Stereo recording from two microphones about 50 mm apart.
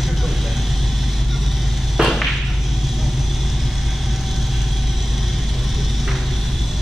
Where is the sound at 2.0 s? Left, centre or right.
Centre.